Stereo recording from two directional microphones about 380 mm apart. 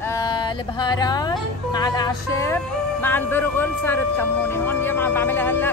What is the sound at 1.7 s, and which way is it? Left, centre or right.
Music, centre.